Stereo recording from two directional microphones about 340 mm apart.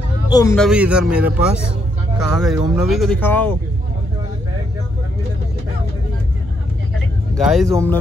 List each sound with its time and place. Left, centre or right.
0.3 s a man's voice: centre
0.7 s speech: centre
7.3 s speech: centre